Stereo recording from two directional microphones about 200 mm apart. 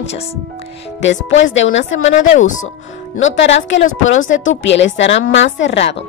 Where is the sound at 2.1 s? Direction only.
35° left (ahead or behind).